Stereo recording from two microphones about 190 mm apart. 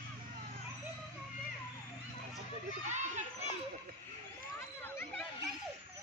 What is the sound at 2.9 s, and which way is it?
Children playing, 40° right (ahead or behind).